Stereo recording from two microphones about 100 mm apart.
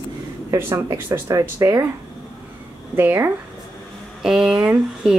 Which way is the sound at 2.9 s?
20° right (ahead or behind).